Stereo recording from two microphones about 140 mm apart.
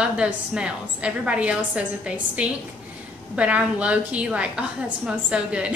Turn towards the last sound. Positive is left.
turn(degrees=-10)  # may be behind; listen again after turning